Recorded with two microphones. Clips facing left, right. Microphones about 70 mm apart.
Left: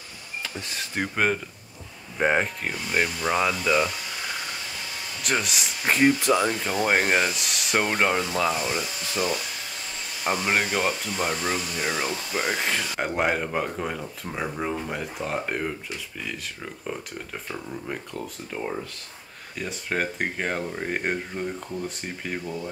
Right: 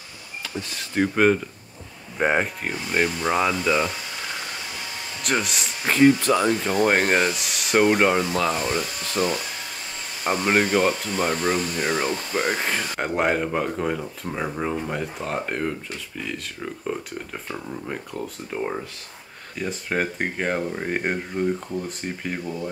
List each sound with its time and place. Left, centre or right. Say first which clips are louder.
0.9 s speech: right 6 dB; centre
5.2 s speech: right 2 dB; centre
6.4 s speech: right 4 dB; centre
8.4 s speech: right 1 dB; centre
8.6 s speech: right 3 dB; right
10.3 s speech: right 2 dB; centre
11.1 s speech: right 4 dB; right
12.9 s speech: right 3 dB; centre